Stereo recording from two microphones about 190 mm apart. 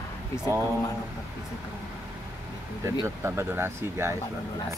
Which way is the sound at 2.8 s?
15° right (ahead or behind).